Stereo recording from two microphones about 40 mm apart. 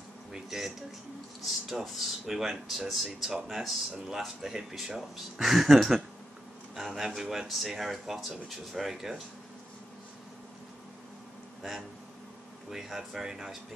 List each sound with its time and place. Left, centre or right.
0.3 s speech: centre
12.6 s speech: centre